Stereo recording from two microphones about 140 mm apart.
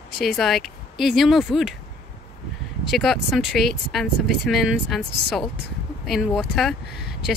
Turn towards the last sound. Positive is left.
turn(degrees=0)  # may be behind; listen again after turning